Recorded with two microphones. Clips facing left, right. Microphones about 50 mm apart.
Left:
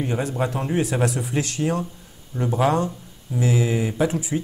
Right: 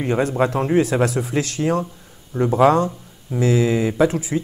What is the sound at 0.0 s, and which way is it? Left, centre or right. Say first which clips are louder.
Speech: right 5 dB; right.